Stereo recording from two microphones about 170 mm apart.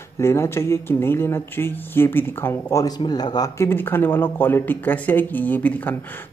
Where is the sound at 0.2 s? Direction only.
15° left (ahead or behind).